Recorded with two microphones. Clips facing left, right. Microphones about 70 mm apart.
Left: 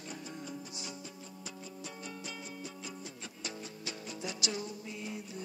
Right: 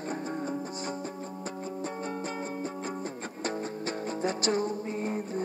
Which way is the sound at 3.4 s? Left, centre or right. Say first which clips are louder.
Right 11 dB; right.